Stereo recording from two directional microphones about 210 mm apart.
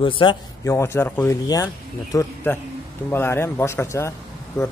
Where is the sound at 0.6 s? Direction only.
10° left (ahead or behind).